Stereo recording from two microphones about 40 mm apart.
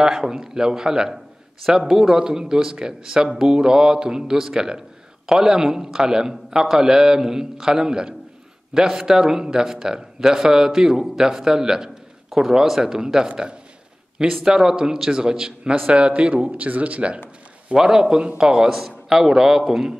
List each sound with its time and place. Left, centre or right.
0.0 s a man's voice: centre
16.1 s speech: right
17.7 s a man's voice: centre